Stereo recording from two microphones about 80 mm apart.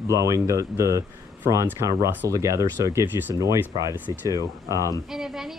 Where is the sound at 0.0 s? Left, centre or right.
Right.